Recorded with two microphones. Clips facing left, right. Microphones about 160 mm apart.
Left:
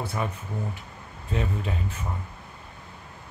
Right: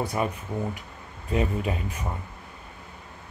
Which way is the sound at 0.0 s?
15° right (ahead or behind).